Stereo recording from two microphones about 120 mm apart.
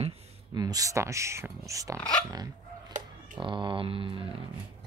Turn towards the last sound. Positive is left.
turn(degrees=-45)  # may be behind; listen again after turning